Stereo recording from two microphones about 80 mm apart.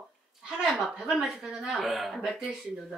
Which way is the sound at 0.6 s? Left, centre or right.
Centre.